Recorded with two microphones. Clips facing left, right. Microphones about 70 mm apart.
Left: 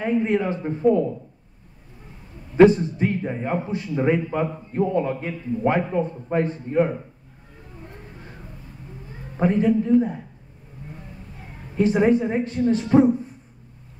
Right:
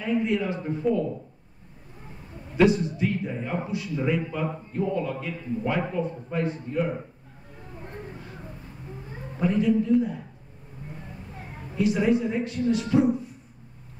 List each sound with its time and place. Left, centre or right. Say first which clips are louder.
0.0 s a man's voice: left 4 dB; left
2.5 s a man's voice: left 7 dB; left
9.4 s a man's voice: left 3 dB; left
11.7 s a man's voice: left 4 dB; left